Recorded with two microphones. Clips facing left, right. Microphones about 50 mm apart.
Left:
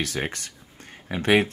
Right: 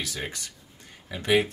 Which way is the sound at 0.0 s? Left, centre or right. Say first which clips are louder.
Left 5 dB; left.